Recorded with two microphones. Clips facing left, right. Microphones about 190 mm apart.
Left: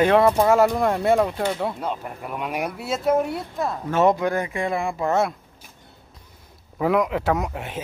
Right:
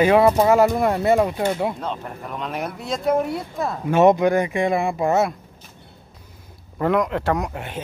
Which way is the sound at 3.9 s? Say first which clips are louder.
Right 5 dB; 15° right (ahead or behind).